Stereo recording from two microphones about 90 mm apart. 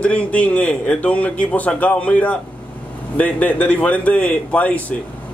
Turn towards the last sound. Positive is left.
turn(degrees=15)  # may be behind; listen again after turning